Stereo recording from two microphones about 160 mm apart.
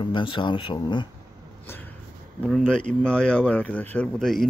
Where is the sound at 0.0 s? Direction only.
30° left (ahead or behind).